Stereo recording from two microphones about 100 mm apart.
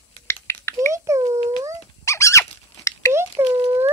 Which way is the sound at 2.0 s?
30° left (ahead or behind).